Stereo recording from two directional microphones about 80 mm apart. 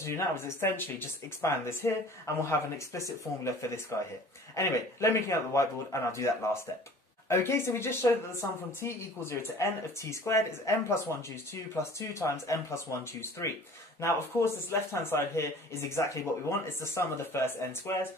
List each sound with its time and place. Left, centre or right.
0.0 s speech: left